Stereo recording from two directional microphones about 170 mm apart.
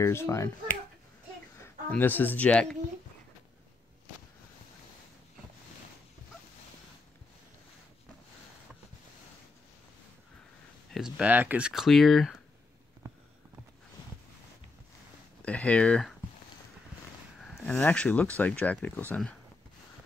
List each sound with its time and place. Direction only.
0.0 s speech: 15° left (ahead or behind)
1.6 s speech: 10° left (ahead or behind)
10.9 s speech: centre (ahead or behind)
15.4 s speech: 10° left (ahead or behind)
17.4 s speech: 5° left (ahead or behind)